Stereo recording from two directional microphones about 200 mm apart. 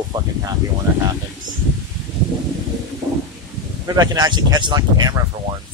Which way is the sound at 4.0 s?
20° right (ahead or behind).